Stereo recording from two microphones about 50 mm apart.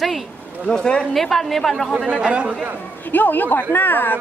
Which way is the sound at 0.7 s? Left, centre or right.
Centre.